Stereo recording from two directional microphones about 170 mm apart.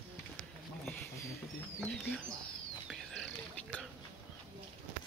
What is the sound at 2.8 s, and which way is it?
Whispering, centre (ahead or behind).